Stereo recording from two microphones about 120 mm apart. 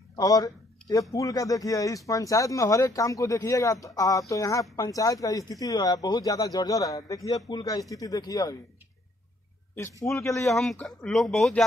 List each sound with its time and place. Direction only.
0.1 s a sound: 30° left (ahead or behind)
1.1 s speech: 30° left (ahead or behind)
9.8 s speech: 25° left (ahead or behind)
10.4 s speech: centre (ahead or behind)